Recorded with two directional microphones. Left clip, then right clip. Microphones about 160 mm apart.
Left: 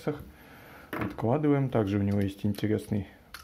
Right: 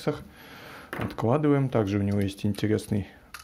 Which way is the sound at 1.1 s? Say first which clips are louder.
Right 3 dB; 20° right (ahead or behind).